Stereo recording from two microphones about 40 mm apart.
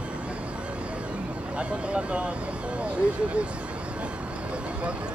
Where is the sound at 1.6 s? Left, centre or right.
Right.